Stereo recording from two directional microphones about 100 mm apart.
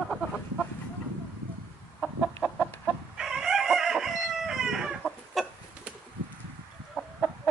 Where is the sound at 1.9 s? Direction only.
10° right (ahead or behind).